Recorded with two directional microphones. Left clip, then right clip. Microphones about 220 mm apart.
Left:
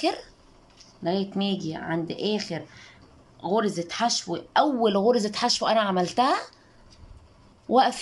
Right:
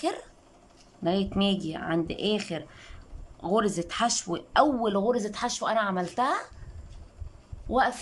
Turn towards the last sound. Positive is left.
turn(degrees=5)  # may be behind; listen again after turning